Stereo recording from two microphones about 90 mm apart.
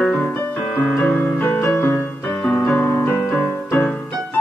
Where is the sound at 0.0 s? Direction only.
15° left (ahead or behind).